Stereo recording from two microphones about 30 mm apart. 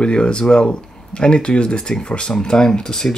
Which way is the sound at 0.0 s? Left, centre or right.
Left.